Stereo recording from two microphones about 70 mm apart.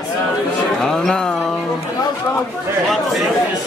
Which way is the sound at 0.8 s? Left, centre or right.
Centre.